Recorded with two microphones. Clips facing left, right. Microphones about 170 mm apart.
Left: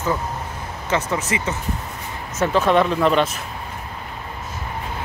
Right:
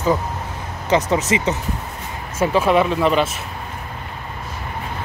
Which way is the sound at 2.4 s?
10° right (ahead or behind).